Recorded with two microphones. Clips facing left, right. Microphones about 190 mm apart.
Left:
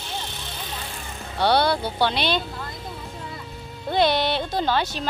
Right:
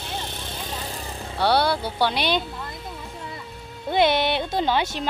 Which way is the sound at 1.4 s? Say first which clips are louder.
Left 1 dB; 5° right (ahead or behind).